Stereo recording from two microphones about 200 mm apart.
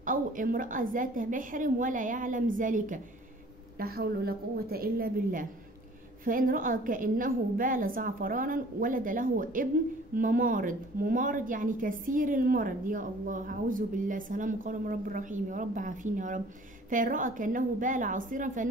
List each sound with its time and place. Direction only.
0.0 s a woman's voice: 40° right (ahead or behind)